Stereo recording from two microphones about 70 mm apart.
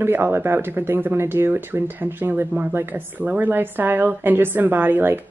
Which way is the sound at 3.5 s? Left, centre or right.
Right.